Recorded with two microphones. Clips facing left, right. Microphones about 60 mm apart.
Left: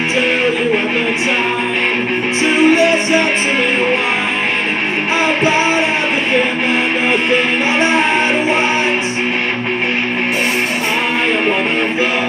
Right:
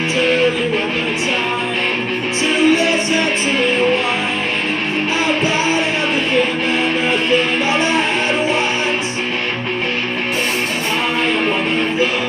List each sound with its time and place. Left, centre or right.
2.4 s music: left
5.2 s music: left